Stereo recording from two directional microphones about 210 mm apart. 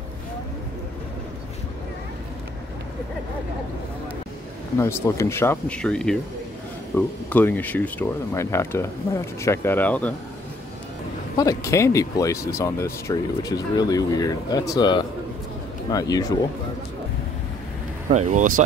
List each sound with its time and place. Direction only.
4.7 s speech: 15° left (ahead or behind)
11.3 s speech: 15° left (ahead or behind)
18.1 s speech: 35° right (ahead or behind)